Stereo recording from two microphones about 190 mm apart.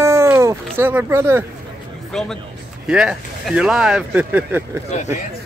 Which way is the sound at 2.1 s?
5° left (ahead or behind).